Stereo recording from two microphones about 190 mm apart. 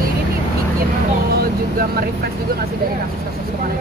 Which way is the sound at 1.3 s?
50° right (ahead or behind).